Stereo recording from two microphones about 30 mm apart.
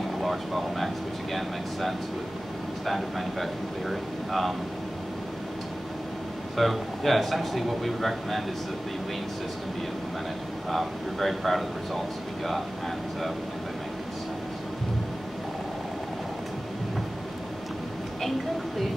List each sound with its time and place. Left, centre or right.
0.2 s air conditioning: centre
2.9 s speech: centre
6.5 s speech: centre
10.7 s speech: centre